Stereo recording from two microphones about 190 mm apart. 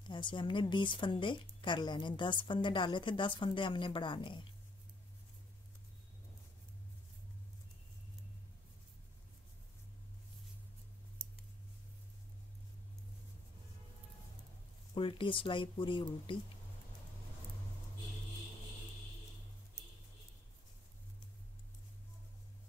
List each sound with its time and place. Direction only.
0.1 s a woman's voice: 25° left (ahead or behind)
15.0 s a woman's voice: 25° left (ahead or behind)